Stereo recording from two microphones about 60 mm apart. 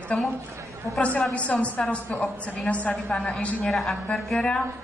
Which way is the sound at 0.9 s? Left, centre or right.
Right.